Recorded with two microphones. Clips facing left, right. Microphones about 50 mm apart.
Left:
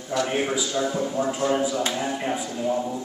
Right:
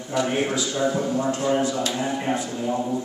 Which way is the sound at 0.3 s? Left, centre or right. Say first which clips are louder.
Right 1 dB; centre.